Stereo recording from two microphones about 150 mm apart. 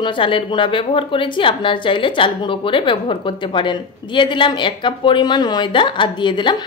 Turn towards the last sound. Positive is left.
turn(degrees=30)  # may be behind; listen again after turning